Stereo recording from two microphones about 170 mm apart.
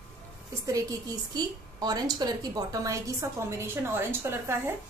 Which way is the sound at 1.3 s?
20° right (ahead or behind).